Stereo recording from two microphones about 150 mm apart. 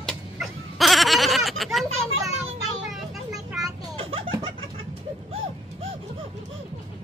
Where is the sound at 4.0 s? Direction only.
35° right (ahead or behind).